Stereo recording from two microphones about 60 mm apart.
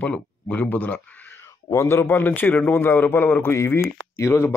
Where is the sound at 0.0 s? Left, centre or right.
Left.